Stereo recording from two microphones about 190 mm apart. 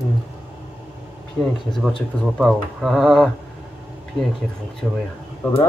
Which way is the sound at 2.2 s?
Centre (ahead or behind).